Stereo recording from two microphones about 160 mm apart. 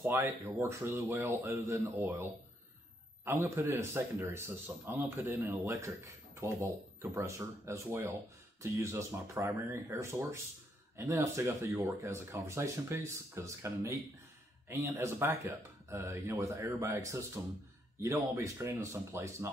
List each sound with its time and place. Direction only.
0.0 s speech: 15° right (ahead or behind)
3.3 s speech: 15° right (ahead or behind)